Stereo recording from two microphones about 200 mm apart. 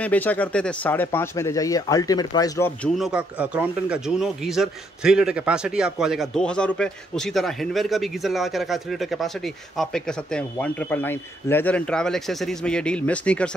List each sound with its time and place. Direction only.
0.0 s speech: 10° left (ahead or behind)
2.8 s speech: 5° right (ahead or behind)